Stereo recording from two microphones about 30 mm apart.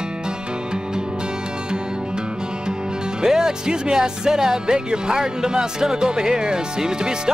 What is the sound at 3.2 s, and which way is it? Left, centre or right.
Speech, right.